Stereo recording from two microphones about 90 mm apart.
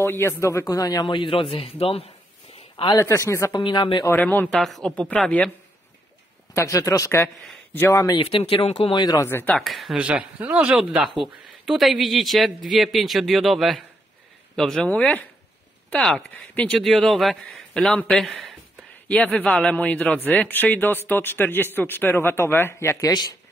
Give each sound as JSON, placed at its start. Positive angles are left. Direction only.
{"t": 0.0, "sound": "speech", "side_deg": 30}
{"t": 1.0, "sound": "a man's voice", "side_deg": 65}
{"t": 3.0, "sound": "speech", "side_deg": 35}
{"t": 3.5, "sound": "speech", "side_deg": 55}
{"t": 4.1, "sound": "a man's voice", "side_deg": 25}
{"t": 4.5, "sound": "a man's voice", "side_deg": 0}
{"t": 6.5, "sound": "speech", "side_deg": 35}
{"t": 8.2, "sound": "a man's voice", "side_deg": 85}
{"t": 9.2, "sound": "a man's voice", "side_deg": 25}
{"t": 9.6, "sound": "a man's voice", "side_deg": 0}
{"t": 9.9, "sound": "a man's voice", "side_deg": -15}
{"t": 14.9, "sound": "a man's voice", "side_deg": 15}
{"t": 16.0, "sound": "a man's voice", "side_deg": 5}
{"t": 19.0, "sound": "a man's voice", "side_deg": 15}